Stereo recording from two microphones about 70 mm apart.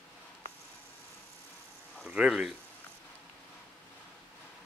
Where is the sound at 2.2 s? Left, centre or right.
Centre.